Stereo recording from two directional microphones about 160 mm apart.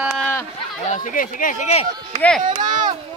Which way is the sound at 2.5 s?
25° right (ahead or behind).